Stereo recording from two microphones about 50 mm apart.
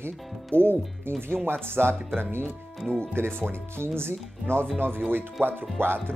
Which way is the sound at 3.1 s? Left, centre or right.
Right.